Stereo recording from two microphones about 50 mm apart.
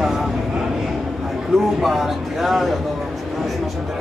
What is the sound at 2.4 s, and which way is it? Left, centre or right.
Speech, centre.